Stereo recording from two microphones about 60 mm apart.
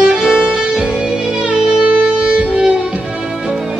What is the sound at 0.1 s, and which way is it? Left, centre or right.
Music, centre.